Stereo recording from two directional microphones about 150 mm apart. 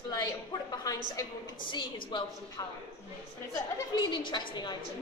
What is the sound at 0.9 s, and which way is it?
A woman's voice, 25° left (ahead or behind).